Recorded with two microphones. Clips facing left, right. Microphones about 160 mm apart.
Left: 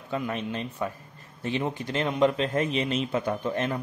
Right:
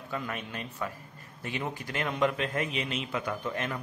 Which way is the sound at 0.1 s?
25° left (ahead or behind).